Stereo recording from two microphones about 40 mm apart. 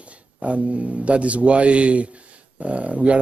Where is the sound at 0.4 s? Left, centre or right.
Right.